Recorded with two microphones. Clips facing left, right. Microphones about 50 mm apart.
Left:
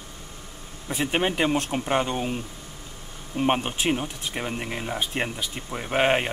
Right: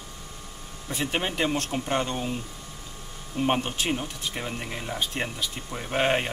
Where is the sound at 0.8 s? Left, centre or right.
Centre.